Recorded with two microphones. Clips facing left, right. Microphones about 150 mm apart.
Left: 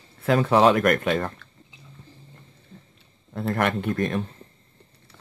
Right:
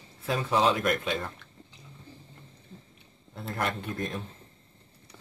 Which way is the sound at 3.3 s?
65° left (ahead or behind).